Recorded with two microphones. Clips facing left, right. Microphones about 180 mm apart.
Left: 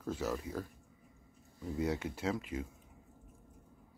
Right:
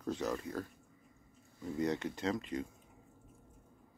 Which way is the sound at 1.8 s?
10° left (ahead or behind).